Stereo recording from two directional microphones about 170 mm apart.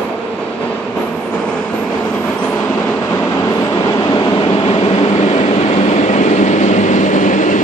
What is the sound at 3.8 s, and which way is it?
Train, 25° left (ahead or behind).